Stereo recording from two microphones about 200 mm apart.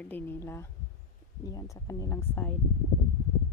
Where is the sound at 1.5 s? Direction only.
15° left (ahead or behind).